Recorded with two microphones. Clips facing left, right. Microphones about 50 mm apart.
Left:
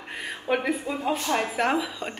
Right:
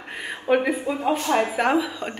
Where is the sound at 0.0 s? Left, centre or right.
Centre.